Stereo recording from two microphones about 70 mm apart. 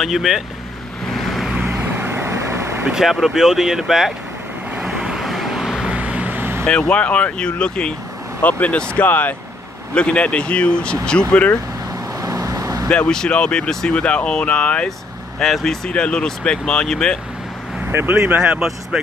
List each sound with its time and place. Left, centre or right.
0.0 s speech: centre
1.0 s vehicle: centre
1.7 s vehicle: right
2.8 s speech: centre
4.8 s vehicle: centre
5.9 s vehicle: centre
6.6 s speech: centre
9.9 s speech: centre
12.2 s vehicle: right
12.8 s speech: centre
17.8 s speech: right
18.4 s speech: centre